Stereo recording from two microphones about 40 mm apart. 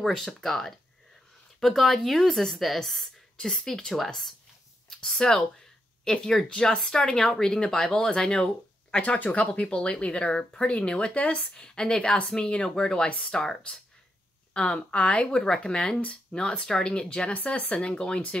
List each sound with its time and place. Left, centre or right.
0.0 s a woman's voice: centre
8.9 s speech: left
11.5 s speech: left
14.5 s speech: left
17.3 s speech: left
17.7 s speech: left